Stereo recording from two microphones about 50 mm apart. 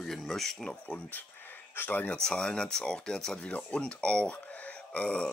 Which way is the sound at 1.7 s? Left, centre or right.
Left.